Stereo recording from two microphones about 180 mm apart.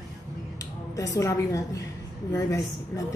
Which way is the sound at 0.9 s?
20° left (ahead or behind).